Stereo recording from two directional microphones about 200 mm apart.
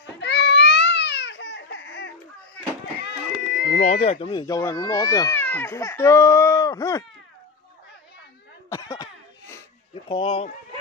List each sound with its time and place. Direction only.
0.2 s baby cry: 60° left (ahead or behind)
3.0 s cat: 55° left (ahead or behind)
3.8 s speech: 30° left (ahead or behind)
8.6 s cough: 15° left (ahead or behind)
10.0 s speech: 25° left (ahead or behind)